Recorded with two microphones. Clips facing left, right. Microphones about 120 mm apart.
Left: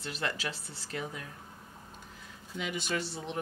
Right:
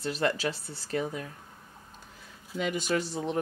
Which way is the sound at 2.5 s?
45° right (ahead or behind).